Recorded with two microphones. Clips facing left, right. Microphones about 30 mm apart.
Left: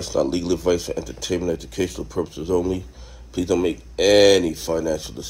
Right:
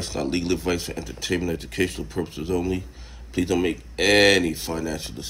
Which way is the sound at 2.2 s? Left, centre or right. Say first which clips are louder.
Left 4 dB; centre.